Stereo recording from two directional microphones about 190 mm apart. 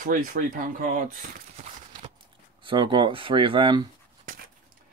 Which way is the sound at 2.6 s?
25° right (ahead or behind).